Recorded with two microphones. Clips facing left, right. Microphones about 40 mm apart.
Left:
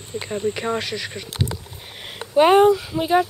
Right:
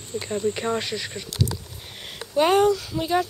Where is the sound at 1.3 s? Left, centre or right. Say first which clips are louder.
Right 1 dB; left.